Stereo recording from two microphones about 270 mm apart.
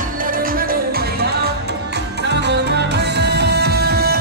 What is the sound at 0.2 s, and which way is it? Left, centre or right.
Music, right.